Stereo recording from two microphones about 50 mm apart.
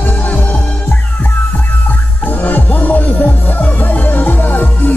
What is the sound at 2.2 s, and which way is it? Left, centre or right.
Music, left.